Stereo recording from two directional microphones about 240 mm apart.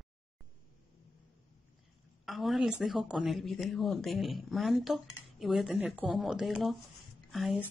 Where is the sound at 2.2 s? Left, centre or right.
Centre.